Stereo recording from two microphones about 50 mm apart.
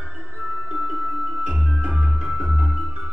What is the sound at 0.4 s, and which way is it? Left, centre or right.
Music, centre.